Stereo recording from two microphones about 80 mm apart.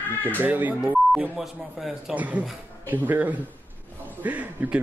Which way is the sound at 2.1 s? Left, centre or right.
Centre.